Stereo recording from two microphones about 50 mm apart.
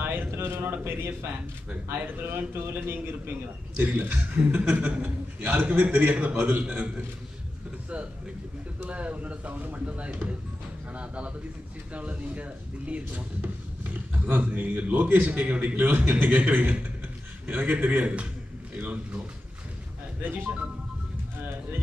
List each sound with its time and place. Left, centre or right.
0.0 s a sound: right
0.3 s a man's voice: right
3.7 s a man's voice: right
8.8 s a man's voice: right
17.8 s a man's voice: right
20.2 s a man's voice: right